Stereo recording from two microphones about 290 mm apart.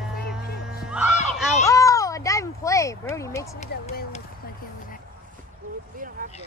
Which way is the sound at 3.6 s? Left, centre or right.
Left.